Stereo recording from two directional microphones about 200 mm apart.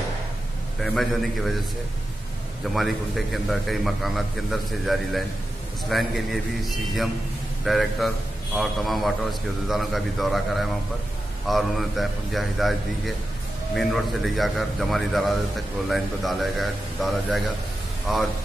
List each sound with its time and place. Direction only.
0.7 s a man's voice: centre (ahead or behind)
2.7 s a man's voice: centre (ahead or behind)